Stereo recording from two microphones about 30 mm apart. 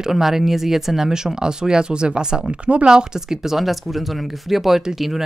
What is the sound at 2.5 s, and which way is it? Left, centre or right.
Speech, right.